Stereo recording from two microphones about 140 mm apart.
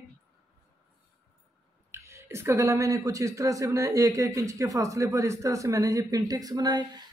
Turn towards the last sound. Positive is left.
turn(degrees=-30)  # may be behind; listen again after turning